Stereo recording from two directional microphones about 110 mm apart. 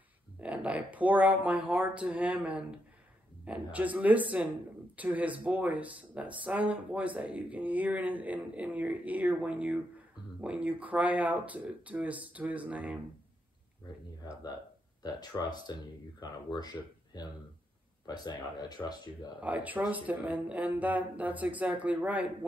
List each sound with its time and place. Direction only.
0.4 s speech: 10° right (ahead or behind)
15.0 s speech: 40° left (ahead or behind)
19.4 s speech: 15° right (ahead or behind)